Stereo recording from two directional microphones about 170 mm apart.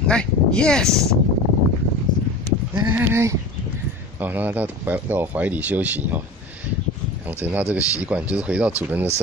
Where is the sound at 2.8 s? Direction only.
15° right (ahead or behind).